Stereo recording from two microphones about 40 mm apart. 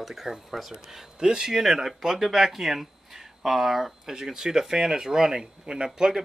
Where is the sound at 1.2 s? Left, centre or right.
Centre.